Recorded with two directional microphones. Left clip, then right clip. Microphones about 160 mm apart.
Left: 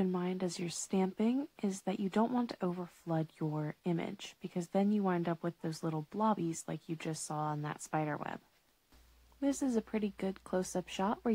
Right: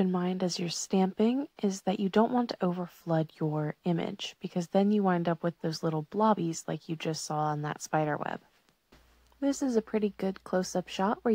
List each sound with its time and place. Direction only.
0.0 s speech: 25° right (ahead or behind)
9.4 s speech: 15° right (ahead or behind)